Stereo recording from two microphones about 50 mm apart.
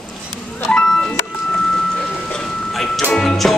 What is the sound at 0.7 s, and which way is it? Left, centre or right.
Music, centre.